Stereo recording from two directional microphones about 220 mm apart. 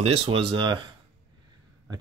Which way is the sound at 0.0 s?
25° right (ahead or behind).